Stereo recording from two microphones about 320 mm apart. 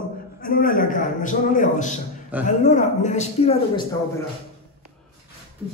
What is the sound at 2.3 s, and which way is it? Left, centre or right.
Speech, centre.